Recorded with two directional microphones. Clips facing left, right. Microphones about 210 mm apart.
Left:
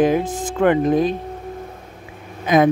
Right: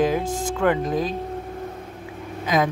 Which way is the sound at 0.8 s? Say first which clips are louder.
Left 7 dB; 60° left (ahead or behind).